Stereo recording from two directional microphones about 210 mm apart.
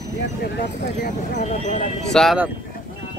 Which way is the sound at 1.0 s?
35° left (ahead or behind).